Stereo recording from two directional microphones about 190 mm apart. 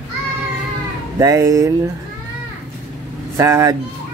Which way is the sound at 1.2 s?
15° right (ahead or behind).